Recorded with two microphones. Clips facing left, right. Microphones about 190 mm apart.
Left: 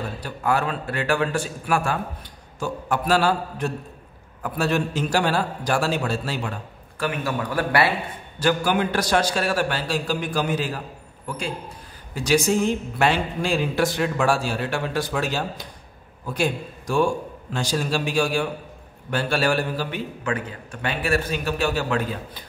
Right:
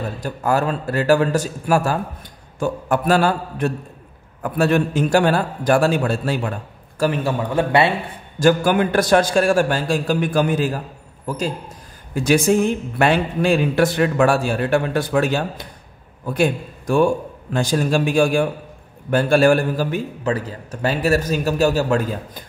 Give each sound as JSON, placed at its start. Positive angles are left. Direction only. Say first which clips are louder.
{"t": 0.2, "sound": "a man's voice", "louder": "right 4 dB", "side_deg": -40}
{"t": 2.6, "sound": "a man's voice", "louder": "right 5 dB", "side_deg": -50}
{"t": 7.0, "sound": "a man's voice", "louder": "right 6 dB", "side_deg": -30}
{"t": 8.4, "sound": "a man's voice", "louder": "right 6 dB", "side_deg": -50}
{"t": 12.1, "sound": "a man's voice", "louder": "right 4 dB", "side_deg": -55}